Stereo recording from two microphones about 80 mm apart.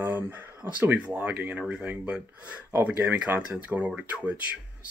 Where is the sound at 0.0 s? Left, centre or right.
Right.